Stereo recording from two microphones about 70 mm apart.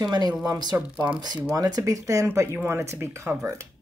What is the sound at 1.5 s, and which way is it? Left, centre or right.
Speech, right.